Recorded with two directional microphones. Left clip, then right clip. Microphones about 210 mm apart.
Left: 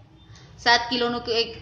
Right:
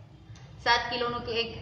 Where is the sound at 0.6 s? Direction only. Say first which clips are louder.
Left 6 dB; 45° left (ahead or behind).